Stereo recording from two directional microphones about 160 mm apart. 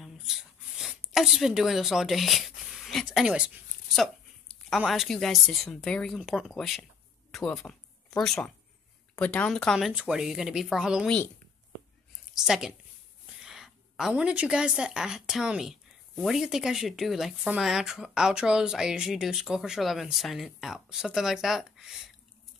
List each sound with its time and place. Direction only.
0.0 s a sound: centre (ahead or behind)
4.6 s a woman's voice: centre (ahead or behind)
12.4 s a woman's voice: centre (ahead or behind)